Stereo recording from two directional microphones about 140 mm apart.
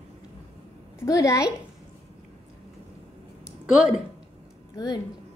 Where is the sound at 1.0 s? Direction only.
20° left (ahead or behind).